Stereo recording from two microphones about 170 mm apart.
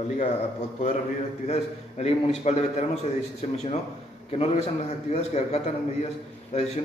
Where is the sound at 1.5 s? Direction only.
40° left (ahead or behind).